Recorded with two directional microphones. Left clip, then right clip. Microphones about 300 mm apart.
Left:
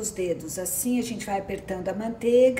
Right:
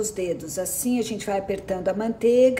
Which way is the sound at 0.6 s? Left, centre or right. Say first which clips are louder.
Right 3 dB; centre.